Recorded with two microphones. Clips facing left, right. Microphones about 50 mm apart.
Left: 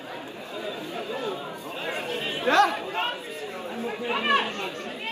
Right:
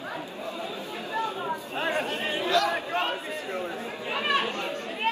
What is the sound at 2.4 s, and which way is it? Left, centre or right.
Chatter, left.